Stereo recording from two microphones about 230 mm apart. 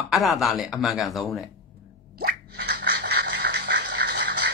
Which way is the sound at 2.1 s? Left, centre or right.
Right.